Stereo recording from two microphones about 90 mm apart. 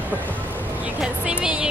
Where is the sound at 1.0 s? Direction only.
10° right (ahead or behind).